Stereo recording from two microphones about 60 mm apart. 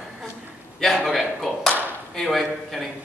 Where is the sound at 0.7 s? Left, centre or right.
Centre.